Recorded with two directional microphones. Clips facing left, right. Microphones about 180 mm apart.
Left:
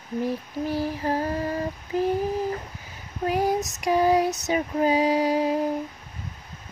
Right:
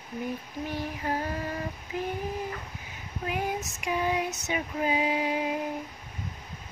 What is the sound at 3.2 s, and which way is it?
Female singing, 35° left (ahead or behind).